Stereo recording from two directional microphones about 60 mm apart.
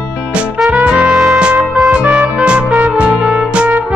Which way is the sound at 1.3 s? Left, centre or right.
Centre.